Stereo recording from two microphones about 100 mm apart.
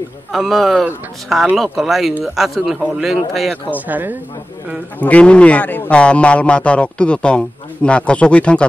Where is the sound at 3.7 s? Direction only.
15° right (ahead or behind).